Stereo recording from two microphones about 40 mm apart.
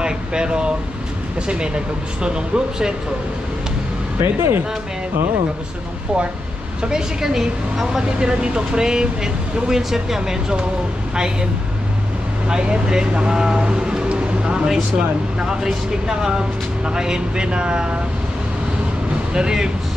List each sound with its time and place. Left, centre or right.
0.0 s speech: right
2.2 s speech: right
4.2 s speech: right
6.8 s speech: centre
8.3 s speech: right
12.4 s speech: right
19.3 s speech: centre